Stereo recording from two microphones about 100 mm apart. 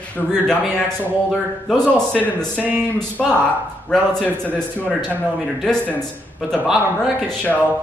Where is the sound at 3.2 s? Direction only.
5° left (ahead or behind).